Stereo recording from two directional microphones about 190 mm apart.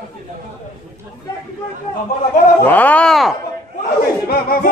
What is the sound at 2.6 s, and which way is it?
Speech, 10° left (ahead or behind).